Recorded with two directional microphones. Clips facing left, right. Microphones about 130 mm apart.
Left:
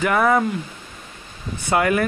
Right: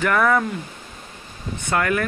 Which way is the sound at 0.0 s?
15° left (ahead or behind).